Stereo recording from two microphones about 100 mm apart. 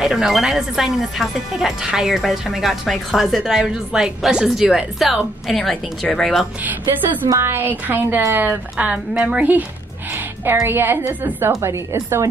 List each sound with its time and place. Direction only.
0.0 s speech: 5° right (ahead or behind)
7.2 s a woman's voice: 25° right (ahead or behind)
10.7 s a woman's voice: 20° right (ahead or behind)